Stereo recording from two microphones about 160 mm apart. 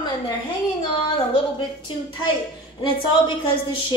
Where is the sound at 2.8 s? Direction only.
30° left (ahead or behind).